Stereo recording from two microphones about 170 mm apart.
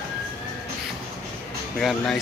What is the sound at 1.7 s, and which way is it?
Speech, centre (ahead or behind).